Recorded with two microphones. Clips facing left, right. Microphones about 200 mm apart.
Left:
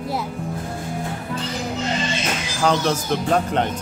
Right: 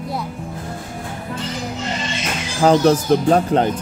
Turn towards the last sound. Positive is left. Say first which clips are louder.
# right 5 dB
turn(degrees=-35)  # may be behind; listen again after turning